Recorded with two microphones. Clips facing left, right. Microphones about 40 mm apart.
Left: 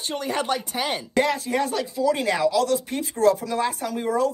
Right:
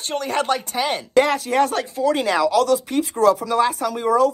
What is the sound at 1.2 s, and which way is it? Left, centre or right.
Speech, right.